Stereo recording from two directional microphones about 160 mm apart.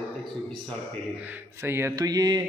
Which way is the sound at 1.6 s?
15° right (ahead or behind).